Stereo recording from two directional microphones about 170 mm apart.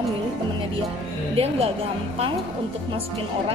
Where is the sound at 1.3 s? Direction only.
35° right (ahead or behind).